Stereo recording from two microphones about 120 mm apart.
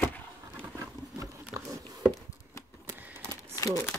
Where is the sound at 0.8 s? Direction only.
25° right (ahead or behind).